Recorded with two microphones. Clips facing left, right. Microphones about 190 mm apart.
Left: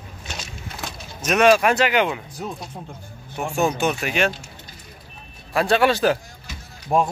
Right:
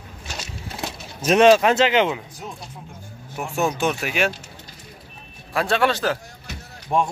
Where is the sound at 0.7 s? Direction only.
30° right (ahead or behind).